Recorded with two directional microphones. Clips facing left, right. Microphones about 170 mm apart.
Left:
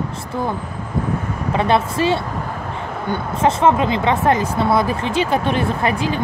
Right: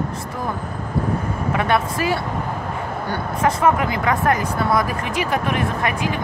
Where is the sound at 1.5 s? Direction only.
25° left (ahead or behind).